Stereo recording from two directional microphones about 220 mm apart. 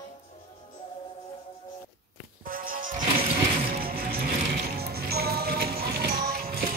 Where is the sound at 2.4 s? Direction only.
40° right (ahead or behind).